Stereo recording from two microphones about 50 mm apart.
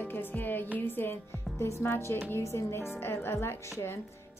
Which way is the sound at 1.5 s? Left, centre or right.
Left.